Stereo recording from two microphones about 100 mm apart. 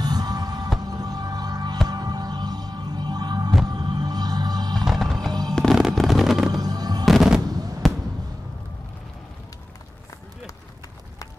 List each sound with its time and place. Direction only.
0.0 s music: 40° right (ahead or behind)
4.8 s music: centre (ahead or behind)
5.5 s fireworks: 5° left (ahead or behind)
6.5 s music: 40° right (ahead or behind)
7.1 s fireworks: 5° right (ahead or behind)
7.4 s fireworks: 40° right (ahead or behind)